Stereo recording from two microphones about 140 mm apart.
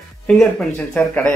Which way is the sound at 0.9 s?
5° left (ahead or behind).